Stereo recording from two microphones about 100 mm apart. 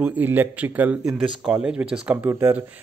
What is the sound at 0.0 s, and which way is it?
Speech, 15° right (ahead or behind).